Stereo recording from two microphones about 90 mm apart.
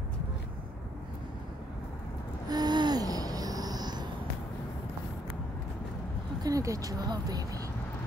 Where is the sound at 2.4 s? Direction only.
50° right (ahead or behind).